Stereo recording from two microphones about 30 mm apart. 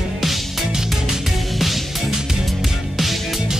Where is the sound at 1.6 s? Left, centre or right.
Centre.